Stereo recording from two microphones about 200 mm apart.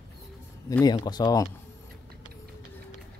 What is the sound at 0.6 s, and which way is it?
Speech, 20° left (ahead or behind).